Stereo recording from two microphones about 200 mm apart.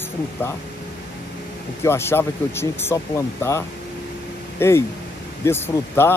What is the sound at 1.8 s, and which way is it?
Speech, 10° left (ahead or behind).